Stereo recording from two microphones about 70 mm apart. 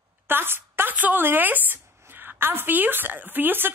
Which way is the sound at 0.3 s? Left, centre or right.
Right.